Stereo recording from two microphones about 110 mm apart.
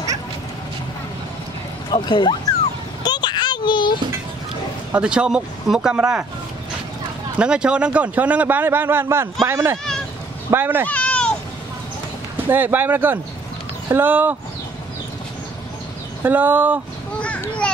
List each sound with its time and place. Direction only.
1.9 s speech: 45° left (ahead or behind)
3.0 s a sound: 40° left (ahead or behind)
4.9 s a man's voice: 10° right (ahead or behind)
7.3 s a man's voice: 10° right (ahead or behind)
10.9 s a sound: 10° left (ahead or behind)
12.4 s a man's voice: 15° right (ahead or behind)
16.2 s a man's voice: 15° right (ahead or behind)